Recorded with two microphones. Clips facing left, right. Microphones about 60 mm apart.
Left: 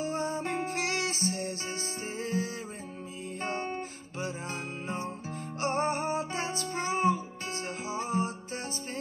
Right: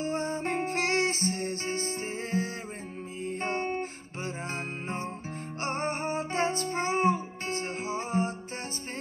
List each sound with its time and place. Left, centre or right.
0.0 s music: right
3.4 s guitar: right
4.8 s music: right